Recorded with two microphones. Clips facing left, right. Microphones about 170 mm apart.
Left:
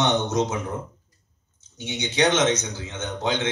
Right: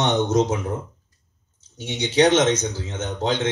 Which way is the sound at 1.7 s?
35° right (ahead or behind).